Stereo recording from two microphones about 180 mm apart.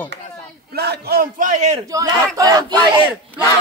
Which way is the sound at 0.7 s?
65° right (ahead or behind).